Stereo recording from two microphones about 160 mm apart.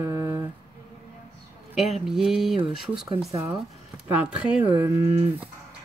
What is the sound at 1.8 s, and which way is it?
Speech, centre (ahead or behind).